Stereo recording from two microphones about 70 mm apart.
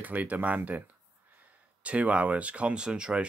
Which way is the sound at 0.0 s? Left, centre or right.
Right.